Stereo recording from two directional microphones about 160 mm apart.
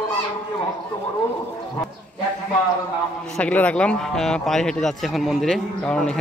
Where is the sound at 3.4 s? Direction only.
10° left (ahead or behind).